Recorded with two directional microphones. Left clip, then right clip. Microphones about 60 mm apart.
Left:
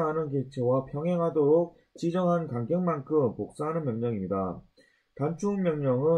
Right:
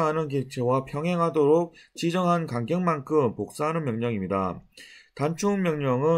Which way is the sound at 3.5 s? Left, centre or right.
Right.